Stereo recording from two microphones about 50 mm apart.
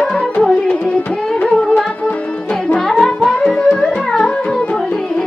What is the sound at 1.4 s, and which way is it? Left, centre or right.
Music, centre.